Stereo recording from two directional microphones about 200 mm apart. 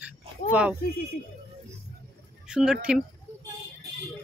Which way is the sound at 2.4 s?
5° right (ahead or behind).